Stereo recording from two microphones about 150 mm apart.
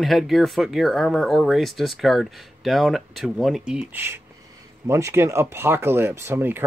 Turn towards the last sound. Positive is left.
turn(degrees=-15)  # may be behind; listen again after turning